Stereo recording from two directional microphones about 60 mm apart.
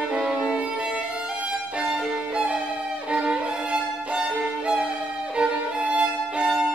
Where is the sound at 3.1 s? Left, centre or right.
Centre.